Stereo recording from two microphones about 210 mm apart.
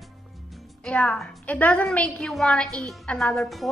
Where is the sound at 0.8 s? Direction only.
5° left (ahead or behind).